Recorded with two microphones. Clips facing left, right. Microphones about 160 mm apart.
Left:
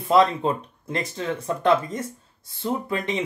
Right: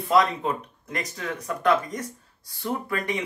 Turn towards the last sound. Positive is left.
turn(degrees=25)  # may be behind; listen again after turning